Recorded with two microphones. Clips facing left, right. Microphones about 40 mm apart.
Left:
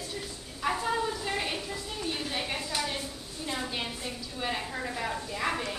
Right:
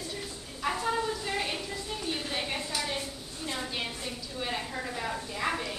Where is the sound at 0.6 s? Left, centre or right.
Centre.